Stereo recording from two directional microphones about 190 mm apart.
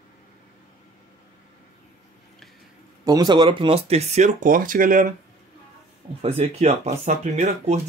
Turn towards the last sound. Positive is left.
turn(degrees=-35)  # may be behind; listen again after turning